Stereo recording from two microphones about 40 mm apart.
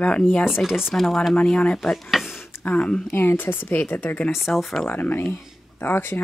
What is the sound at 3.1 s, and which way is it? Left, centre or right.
Speech, left.